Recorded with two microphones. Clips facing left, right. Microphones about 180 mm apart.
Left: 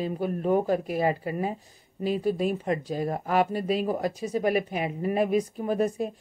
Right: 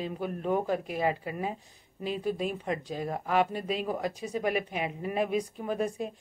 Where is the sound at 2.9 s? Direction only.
45° left (ahead or behind).